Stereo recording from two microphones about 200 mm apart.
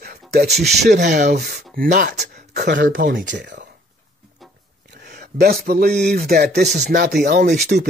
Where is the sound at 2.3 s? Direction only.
55° right (ahead or behind).